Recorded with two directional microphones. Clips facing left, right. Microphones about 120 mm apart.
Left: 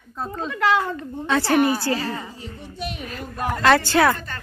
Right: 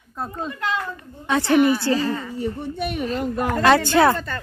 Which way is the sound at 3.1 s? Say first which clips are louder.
Right 3 dB; 20° right (ahead or behind).